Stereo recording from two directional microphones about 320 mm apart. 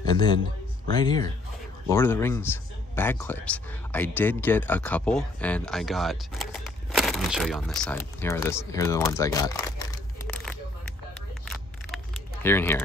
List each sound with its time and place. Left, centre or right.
0.9 s speech: centre
12.4 s speech: centre